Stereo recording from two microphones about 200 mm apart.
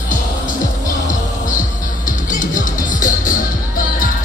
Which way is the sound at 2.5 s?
40° left (ahead or behind).